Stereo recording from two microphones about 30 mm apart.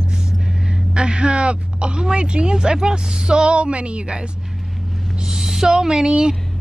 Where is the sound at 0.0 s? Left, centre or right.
Right.